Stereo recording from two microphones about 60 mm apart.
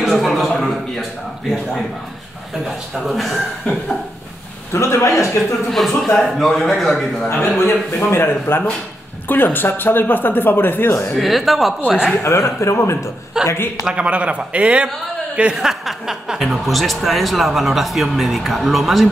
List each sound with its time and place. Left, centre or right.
0.0 s a sound: centre
2.6 s speech: centre
4.7 s speech: left
5.7 s speech: centre
7.5 s speech: left
11.1 s speech: centre
12.2 s speech: left
13.4 s a man's voice: centre